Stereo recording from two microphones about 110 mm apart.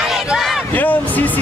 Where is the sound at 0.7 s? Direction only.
15° left (ahead or behind).